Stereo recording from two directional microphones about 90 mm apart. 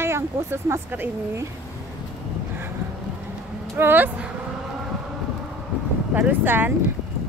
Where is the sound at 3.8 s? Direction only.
20° right (ahead or behind).